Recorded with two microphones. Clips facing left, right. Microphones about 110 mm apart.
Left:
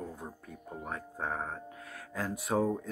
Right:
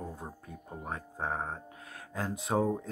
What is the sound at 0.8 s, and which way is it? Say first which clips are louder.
Speech: right 1 dB; 30° right (ahead or behind).